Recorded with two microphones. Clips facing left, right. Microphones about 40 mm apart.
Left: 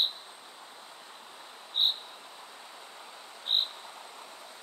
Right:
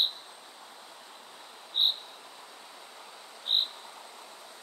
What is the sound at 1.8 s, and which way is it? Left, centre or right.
Cricket, centre.